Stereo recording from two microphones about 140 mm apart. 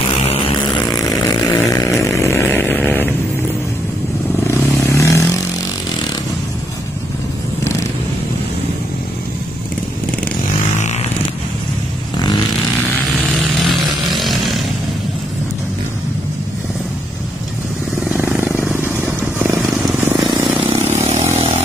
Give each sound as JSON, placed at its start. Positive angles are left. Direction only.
{"t": 1.4, "sound": "chainsaw", "side_deg": 20}
{"t": 4.5, "sound": "vehicle", "side_deg": 20}
{"t": 14.1, "sound": "chainsaw", "side_deg": 0}
{"t": 18.1, "sound": "purr", "side_deg": -15}
{"t": 18.8, "sound": "vehicle", "side_deg": -15}
{"t": 20.9, "sound": "vehicle", "side_deg": -50}